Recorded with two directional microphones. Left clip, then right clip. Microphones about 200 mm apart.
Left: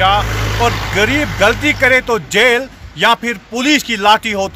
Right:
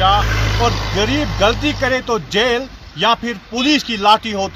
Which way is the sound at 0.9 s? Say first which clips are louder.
Left 4 dB; centre (ahead or behind).